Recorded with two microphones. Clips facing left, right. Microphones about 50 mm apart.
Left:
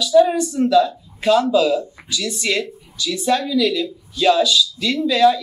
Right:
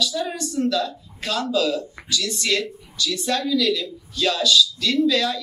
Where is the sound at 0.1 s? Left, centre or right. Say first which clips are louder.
Left 12 dB; left.